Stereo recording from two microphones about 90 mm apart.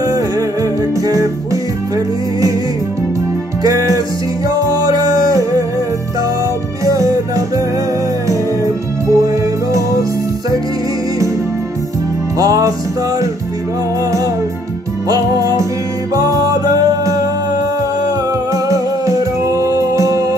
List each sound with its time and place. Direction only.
0.0 s music: 40° right (ahead or behind)
3.6 s music: 40° right (ahead or behind)
6.8 s music: 35° right (ahead or behind)
9.0 s music: 40° right (ahead or behind)
12.4 s music: 40° right (ahead or behind)
15.0 s music: 40° right (ahead or behind)
18.5 s music: 35° right (ahead or behind)